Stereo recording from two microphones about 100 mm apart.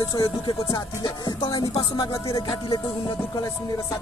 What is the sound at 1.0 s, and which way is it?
Music, 55° left (ahead or behind).